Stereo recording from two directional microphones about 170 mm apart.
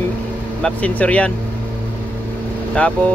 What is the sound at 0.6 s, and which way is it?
Speech, 5° left (ahead or behind).